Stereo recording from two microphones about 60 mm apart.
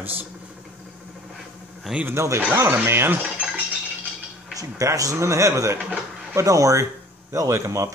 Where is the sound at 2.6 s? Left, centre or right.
Right.